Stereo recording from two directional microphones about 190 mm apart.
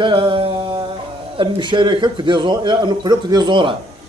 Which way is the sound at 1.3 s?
25° right (ahead or behind).